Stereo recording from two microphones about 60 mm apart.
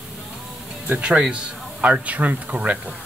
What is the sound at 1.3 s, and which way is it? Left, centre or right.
Speech, right.